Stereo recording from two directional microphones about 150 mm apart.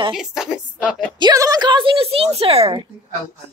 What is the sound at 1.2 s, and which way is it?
A woman's voice, 25° right (ahead or behind).